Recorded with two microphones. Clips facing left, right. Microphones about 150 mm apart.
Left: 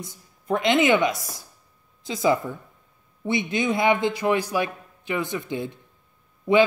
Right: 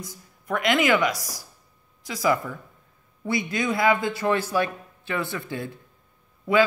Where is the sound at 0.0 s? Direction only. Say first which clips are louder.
Left 1 dB; 25° left (ahead or behind).